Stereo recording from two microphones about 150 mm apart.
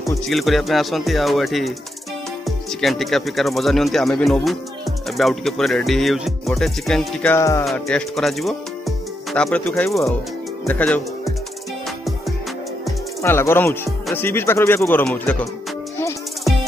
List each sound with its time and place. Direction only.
0.3 s speech: centre (ahead or behind); by 7.6 s 20° left (ahead or behind)
7.6 s speech: 5° left (ahead or behind)
13.2 s speech: 15° left (ahead or behind)